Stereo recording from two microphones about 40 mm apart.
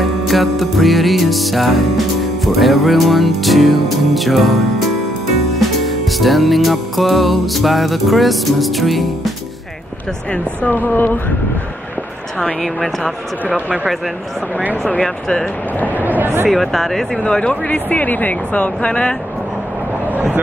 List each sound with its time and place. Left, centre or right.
0.0 s music: centre
10.3 s speech: left
10.7 s speech: left
12.5 s music: centre
15.0 s speech: centre
16.0 s a sound: right
16.4 s music: centre
17.2 s speech: left
17.7 s speech: left